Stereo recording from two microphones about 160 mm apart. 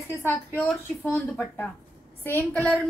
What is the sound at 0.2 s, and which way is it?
A woman's voice, 15° left (ahead or behind).